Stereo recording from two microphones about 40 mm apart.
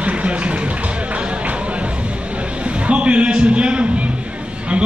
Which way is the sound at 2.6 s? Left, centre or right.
Right.